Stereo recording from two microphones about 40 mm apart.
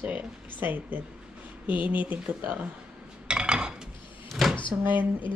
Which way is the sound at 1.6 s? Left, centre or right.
Right.